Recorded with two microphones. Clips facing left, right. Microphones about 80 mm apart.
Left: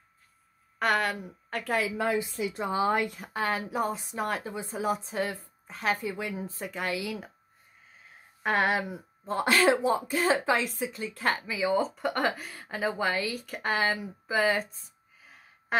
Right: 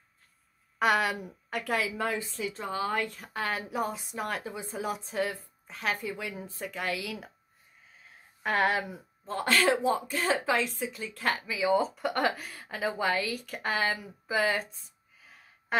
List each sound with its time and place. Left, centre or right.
0.7 s speech: centre
2.2 s a woman's voice: centre
3.1 s speech: centre
8.4 s speech: centre